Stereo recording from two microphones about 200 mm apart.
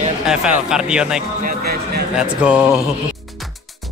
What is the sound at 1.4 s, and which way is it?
Speech, 50° right (ahead or behind).